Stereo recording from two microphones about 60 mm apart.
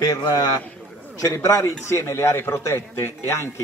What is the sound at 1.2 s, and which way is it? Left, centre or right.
A man's voice, left.